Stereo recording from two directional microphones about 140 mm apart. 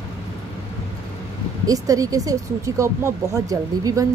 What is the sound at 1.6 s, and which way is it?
A woman's voice, 25° right (ahead or behind).